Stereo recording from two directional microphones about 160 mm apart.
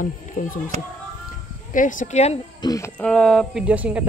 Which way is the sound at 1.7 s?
55° left (ahead or behind).